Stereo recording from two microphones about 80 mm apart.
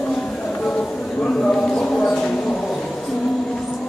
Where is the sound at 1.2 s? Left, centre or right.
Centre.